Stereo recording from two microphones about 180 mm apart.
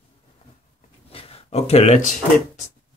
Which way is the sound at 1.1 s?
30° left (ahead or behind).